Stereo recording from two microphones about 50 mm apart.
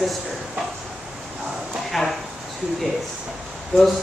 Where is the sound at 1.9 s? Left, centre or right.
Centre.